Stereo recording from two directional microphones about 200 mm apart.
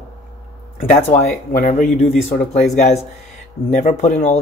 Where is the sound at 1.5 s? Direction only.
40° left (ahead or behind).